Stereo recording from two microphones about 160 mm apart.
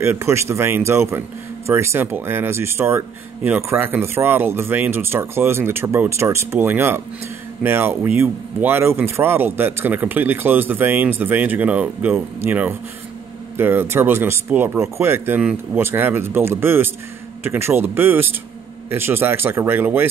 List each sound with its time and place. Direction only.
0.0 s speech: 15° right (ahead or behind)